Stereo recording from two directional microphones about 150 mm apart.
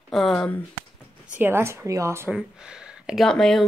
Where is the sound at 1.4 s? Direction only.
15° right (ahead or behind).